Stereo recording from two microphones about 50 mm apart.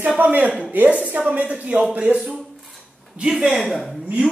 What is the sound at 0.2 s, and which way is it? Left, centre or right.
Speech, right.